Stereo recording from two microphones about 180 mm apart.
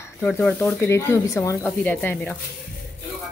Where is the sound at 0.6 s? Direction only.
15° left (ahead or behind).